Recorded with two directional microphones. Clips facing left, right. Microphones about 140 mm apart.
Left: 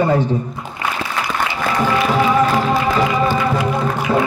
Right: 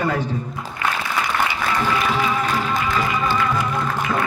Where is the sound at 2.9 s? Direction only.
35° left (ahead or behind).